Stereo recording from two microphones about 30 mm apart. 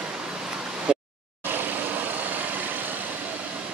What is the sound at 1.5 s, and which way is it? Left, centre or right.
Vehicle, right.